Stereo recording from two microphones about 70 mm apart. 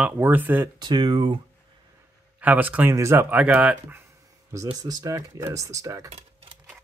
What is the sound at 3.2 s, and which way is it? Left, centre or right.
Speech, right.